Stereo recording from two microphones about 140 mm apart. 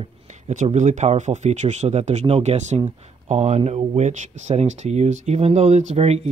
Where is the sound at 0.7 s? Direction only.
60° right (ahead or behind).